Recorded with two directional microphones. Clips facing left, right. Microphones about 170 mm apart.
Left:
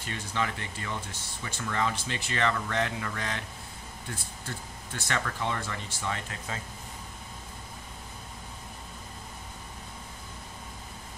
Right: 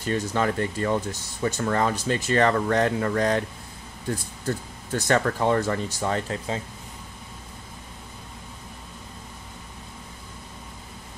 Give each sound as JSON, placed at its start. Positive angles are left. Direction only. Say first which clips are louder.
{"t": 0.0, "sound": "speech", "louder": "right 8 dB", "side_deg": -45}